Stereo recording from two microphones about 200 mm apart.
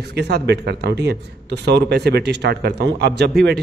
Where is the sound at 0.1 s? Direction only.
55° right (ahead or behind).